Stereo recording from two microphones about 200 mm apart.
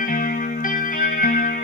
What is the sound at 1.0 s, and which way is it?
Music, 45° left (ahead or behind).